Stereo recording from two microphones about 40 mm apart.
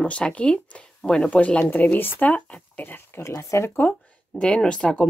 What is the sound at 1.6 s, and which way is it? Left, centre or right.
Speech, left.